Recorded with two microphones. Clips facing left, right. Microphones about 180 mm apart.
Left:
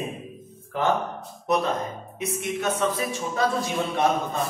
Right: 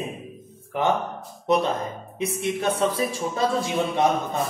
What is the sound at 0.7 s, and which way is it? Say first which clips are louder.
Music: right 1 dB; 20° right (ahead or behind).